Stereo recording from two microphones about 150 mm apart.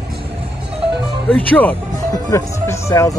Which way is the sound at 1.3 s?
10° left (ahead or behind).